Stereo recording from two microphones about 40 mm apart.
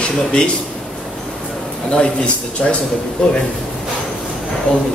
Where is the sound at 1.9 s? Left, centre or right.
Left.